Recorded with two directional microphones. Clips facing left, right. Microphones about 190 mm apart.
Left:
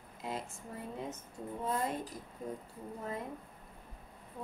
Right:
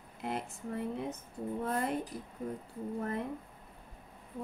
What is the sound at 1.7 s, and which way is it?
Speech, 65° right (ahead or behind).